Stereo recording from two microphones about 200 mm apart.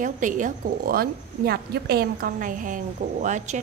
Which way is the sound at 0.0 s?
40° right (ahead or behind).